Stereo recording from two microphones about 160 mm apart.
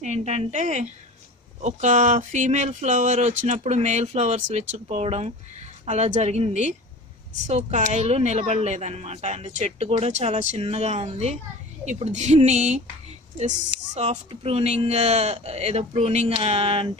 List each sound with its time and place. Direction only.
0.0 s a woman's voice: 45° right (ahead or behind)
13.9 s speech: 40° right (ahead or behind)